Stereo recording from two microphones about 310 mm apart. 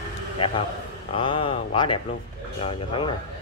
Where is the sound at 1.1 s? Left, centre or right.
Centre.